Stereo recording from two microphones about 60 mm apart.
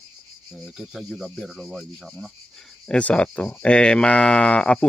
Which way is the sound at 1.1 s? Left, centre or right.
Centre.